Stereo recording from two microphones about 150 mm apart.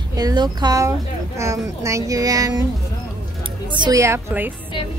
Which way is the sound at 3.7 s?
30° right (ahead or behind).